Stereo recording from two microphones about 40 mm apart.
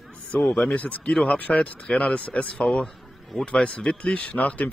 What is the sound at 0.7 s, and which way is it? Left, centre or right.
Speech, left.